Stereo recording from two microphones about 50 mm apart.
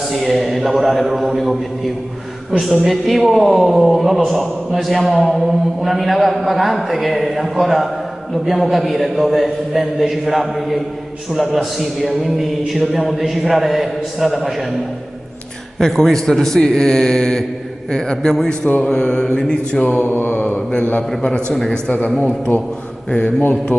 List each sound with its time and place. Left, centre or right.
0.1 s a man's voice: centre
15.8 s a man's voice: centre
20.1 s a man's voice: left